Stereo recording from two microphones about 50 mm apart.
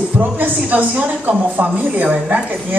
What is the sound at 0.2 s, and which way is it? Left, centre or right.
Speech, right.